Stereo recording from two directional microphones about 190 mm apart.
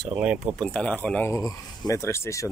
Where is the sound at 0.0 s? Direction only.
10° right (ahead or behind).